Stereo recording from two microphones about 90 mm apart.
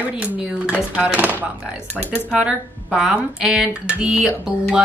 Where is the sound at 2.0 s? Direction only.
15° left (ahead or behind).